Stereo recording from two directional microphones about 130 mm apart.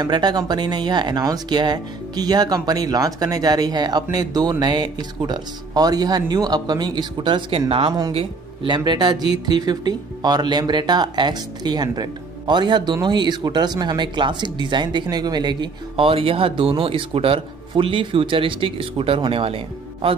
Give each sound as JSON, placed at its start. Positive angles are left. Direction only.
{"t": 0.0, "sound": "speech", "side_deg": -35}